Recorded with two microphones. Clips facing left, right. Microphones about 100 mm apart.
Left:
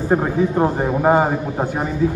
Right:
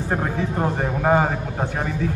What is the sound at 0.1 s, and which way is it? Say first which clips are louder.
A man's voice: left 7 dB; 15° left (ahead or behind).